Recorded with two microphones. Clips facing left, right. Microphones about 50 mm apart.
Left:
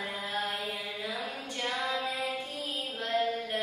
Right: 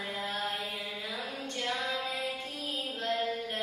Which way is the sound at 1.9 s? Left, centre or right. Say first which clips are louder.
Left 2 dB; centre.